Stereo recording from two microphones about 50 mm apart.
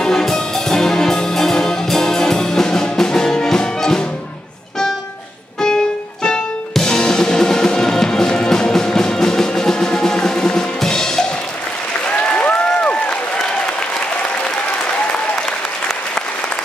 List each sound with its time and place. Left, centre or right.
0.0 s music: centre
6.7 s music: centre
12.2 s applause: left